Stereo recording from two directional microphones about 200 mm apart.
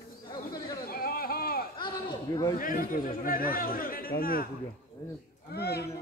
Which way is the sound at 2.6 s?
45° left (ahead or behind).